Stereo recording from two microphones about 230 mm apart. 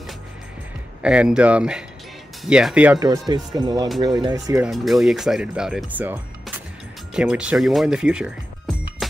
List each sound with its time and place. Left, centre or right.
1.0 s speech: centre
4.6 s speech: centre